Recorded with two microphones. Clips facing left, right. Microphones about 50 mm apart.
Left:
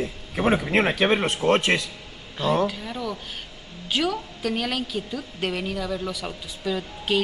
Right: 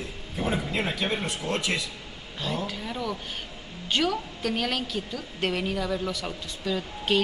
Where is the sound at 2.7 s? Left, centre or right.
Centre.